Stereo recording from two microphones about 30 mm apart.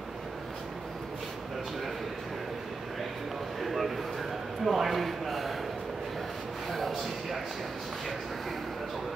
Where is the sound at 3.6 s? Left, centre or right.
Centre.